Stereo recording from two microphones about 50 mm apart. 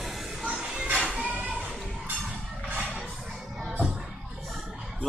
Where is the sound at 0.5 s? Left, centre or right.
Centre.